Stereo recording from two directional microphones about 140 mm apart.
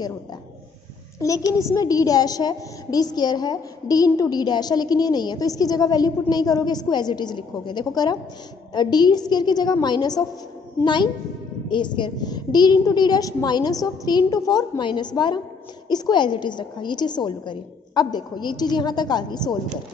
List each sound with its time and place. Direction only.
1.2 s a woman's voice: 25° left (ahead or behind)